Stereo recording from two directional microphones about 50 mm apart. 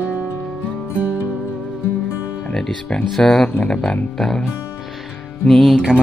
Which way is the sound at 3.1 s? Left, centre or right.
Centre.